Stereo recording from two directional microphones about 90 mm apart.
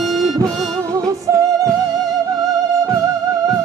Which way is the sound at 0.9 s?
40° right (ahead or behind).